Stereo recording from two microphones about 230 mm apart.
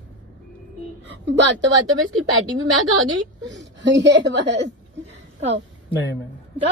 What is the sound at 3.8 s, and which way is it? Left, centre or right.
Speech, right.